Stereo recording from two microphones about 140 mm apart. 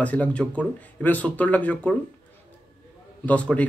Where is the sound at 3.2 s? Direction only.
10° left (ahead or behind).